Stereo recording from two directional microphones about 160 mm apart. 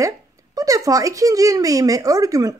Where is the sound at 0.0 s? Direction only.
20° right (ahead or behind).